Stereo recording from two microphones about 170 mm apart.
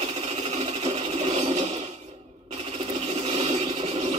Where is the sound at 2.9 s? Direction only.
40° right (ahead or behind).